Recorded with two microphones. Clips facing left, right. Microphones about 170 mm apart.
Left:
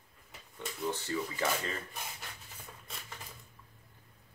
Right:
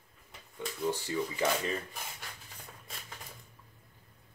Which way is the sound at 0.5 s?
15° right (ahead or behind).